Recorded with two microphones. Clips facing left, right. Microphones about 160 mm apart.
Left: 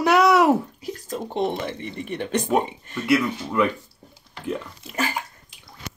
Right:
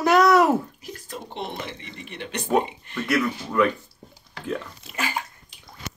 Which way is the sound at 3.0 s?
10° left (ahead or behind).